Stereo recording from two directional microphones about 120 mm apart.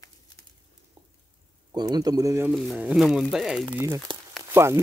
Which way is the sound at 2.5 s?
Centre (ahead or behind).